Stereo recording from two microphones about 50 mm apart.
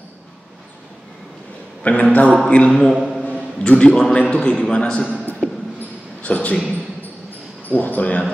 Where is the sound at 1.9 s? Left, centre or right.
Left.